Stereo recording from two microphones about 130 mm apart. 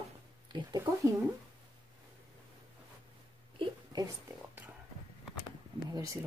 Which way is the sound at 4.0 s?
20° right (ahead or behind).